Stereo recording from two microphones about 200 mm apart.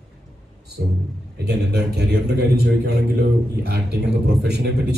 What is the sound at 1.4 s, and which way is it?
Speech, 55° right (ahead or behind).